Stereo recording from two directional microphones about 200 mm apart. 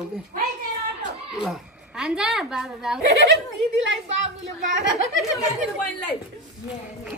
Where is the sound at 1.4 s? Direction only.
Centre (ahead or behind).